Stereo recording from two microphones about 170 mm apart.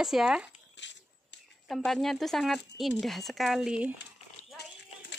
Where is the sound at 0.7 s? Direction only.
90° left.